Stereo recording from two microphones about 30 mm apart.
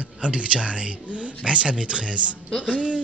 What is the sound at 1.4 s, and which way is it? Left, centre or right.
Speech, right.